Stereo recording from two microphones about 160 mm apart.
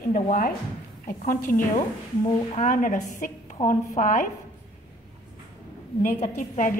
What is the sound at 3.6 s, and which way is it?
Speech, 30° left (ahead or behind).